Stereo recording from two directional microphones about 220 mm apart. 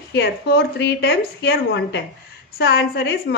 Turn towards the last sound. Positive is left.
turn(degrees=50)  # may be behind; listen again after turning